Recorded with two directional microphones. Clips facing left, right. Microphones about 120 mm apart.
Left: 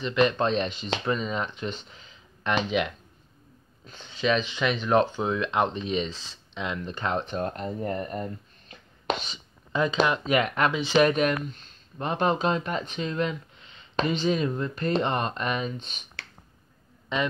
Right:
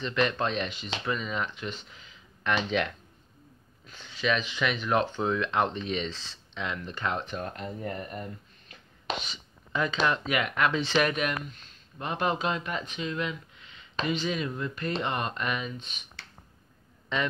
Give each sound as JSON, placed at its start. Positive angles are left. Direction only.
{"t": 0.0, "sound": "speech", "side_deg": 20}
{"t": 3.8, "sound": "speech", "side_deg": 25}
{"t": 10.2, "sound": "speech", "side_deg": 30}
{"t": 10.7, "sound": "speech", "side_deg": 10}
{"t": 11.0, "sound": "speech", "side_deg": 30}
{"t": 17.1, "sound": "speech", "side_deg": 15}